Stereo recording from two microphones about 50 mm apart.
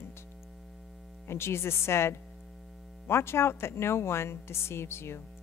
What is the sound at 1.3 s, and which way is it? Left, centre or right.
Speech, left.